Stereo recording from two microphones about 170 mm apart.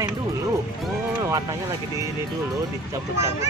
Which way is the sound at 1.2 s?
20° right (ahead or behind).